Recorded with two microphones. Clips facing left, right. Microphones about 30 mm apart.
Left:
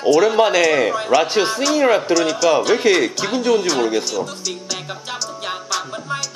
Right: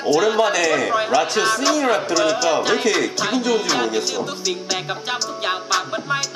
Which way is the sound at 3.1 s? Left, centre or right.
Centre.